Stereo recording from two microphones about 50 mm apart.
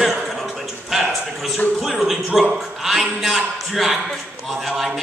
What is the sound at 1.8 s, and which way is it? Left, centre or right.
A man's voice, centre.